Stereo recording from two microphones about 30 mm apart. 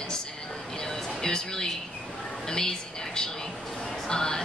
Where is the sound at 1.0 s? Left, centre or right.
Centre.